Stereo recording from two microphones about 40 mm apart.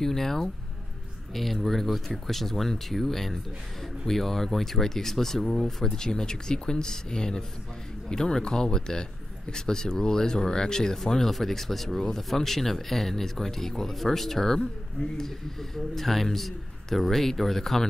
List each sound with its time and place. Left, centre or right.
0.0 s a man's voice: centre